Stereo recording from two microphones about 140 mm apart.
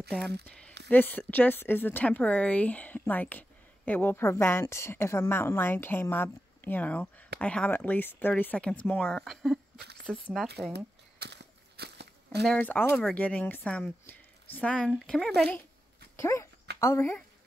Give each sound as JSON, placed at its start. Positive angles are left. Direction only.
{"t": 0.1, "sound": "speech", "side_deg": 5}
{"t": 12.4, "sound": "speech", "side_deg": 10}
{"t": 16.2, "sound": "speech", "side_deg": 20}